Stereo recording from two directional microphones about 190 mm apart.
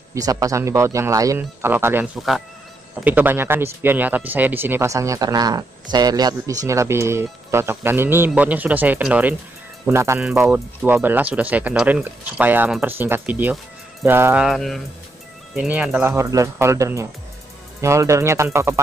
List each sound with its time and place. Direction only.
0.1 s speech: 20° right (ahead or behind)
14.0 s music: 10° right (ahead or behind)
15.5 s speech: 5° right (ahead or behind)